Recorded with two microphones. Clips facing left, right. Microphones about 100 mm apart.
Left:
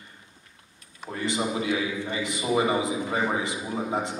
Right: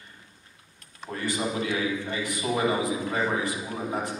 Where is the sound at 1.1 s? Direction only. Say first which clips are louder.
Left 1 dB; 20° left (ahead or behind).